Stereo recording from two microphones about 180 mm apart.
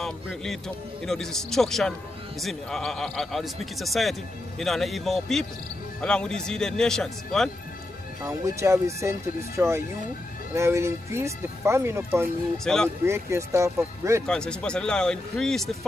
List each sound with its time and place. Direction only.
0.0 s speech: centre (ahead or behind)
8.2 s speech: 15° right (ahead or behind)
12.6 s speech: 5° left (ahead or behind)
13.0 s speech: 15° right (ahead or behind)
14.2 s speech: 5° left (ahead or behind)